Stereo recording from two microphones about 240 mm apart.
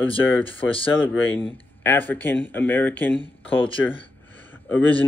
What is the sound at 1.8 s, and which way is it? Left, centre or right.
Speech, centre.